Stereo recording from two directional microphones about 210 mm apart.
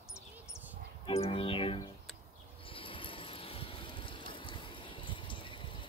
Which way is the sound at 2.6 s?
25° left (ahead or behind).